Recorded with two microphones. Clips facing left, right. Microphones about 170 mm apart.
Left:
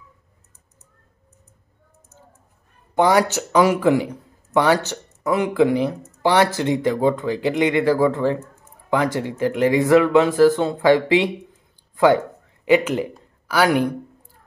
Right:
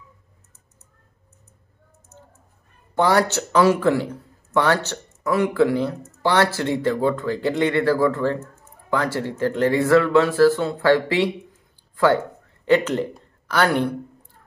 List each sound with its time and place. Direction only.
2.9 s speech: 15° left (ahead or behind)
12.6 s speech: 10° left (ahead or behind)